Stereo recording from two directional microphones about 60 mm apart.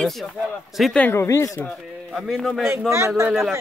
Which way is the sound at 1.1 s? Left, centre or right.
Left.